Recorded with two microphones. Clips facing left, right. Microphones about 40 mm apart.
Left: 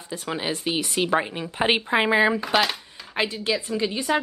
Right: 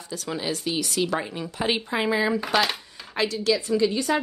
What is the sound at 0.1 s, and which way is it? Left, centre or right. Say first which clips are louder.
Speech: left 1 dB; left.